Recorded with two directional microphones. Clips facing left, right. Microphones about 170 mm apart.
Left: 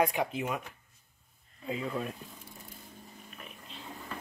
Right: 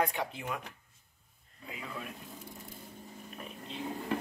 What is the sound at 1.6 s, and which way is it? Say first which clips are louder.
Speech: left 9 dB; 30° left (ahead or behind).